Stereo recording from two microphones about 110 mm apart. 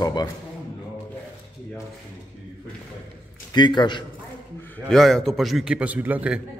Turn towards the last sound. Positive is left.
turn(degrees=-15)  # may be behind; listen again after turning